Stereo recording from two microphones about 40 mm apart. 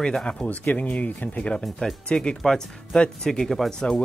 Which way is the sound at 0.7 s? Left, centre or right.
Left.